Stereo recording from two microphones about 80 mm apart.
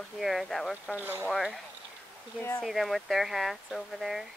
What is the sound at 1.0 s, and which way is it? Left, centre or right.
Speech, right.